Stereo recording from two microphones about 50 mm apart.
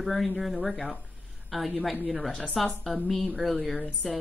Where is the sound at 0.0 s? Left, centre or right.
Centre.